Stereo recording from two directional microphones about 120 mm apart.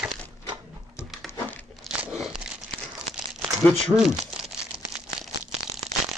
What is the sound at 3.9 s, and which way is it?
Speech, 35° right (ahead or behind).